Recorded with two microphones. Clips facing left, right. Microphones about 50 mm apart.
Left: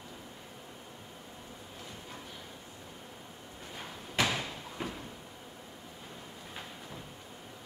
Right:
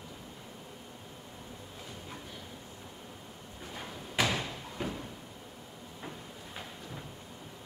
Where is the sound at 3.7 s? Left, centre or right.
Centre.